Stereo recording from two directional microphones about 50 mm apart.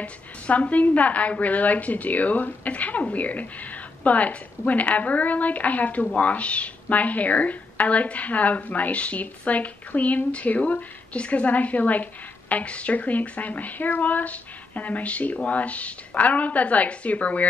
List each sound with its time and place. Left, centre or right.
0.0 s a woman's voice: left